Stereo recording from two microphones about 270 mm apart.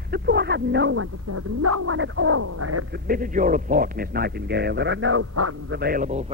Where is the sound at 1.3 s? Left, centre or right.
Right.